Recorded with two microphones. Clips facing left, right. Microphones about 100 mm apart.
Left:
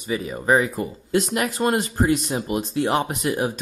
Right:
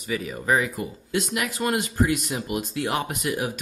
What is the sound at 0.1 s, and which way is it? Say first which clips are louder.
Speech: left 4 dB; 30° left (ahead or behind).